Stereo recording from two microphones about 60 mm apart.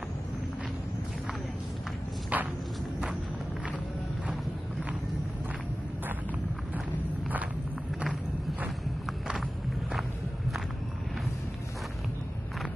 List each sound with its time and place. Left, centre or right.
2.3 s walk: right